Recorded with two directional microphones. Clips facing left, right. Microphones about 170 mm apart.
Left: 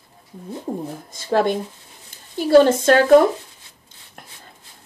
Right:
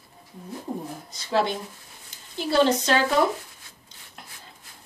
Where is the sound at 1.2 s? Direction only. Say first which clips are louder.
Left 6 dB; 50° left (ahead or behind).